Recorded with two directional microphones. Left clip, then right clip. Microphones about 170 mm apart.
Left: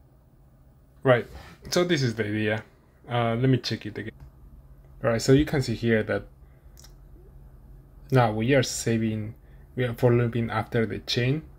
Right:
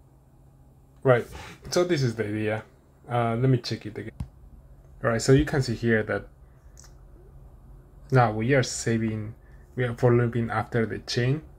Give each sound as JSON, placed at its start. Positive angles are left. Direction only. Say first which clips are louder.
{"t": 1.0, "sound": "speech", "louder": "even", "side_deg": 20}
{"t": 8.4, "sound": "speech", "louder": "left 1 dB", "side_deg": 20}